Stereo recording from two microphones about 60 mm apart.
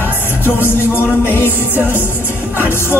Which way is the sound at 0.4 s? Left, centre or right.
Left.